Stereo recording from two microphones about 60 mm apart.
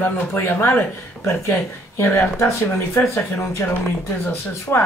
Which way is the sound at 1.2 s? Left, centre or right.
Left.